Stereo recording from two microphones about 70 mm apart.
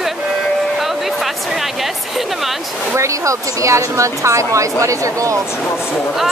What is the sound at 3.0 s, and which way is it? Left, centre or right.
Speech, right.